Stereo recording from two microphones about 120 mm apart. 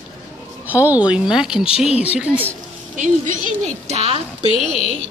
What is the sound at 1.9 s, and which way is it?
Speech, 60° left (ahead or behind).